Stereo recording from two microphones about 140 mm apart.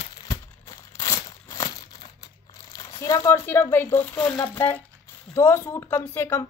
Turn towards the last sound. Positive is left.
turn(degrees=15)  # may be behind; listen again after turning